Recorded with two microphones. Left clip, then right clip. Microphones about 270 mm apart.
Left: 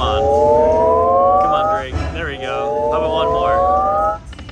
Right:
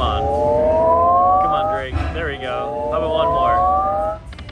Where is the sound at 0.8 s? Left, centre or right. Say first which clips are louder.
Left 1 dB; centre.